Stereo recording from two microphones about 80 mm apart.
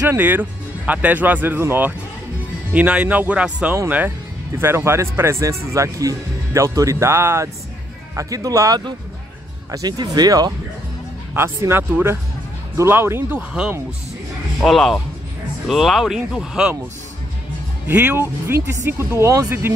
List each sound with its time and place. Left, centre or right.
0.1 s speech: right
4.6 s speech: right
8.2 s speech: right
11.3 s speech: right
13.5 s speech: centre
14.6 s speech: centre
17.8 s speech: right